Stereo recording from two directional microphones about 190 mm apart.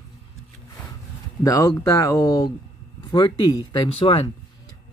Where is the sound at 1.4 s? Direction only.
20° left (ahead or behind).